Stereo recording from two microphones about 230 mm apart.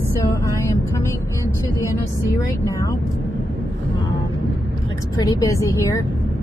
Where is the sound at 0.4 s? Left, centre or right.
Centre.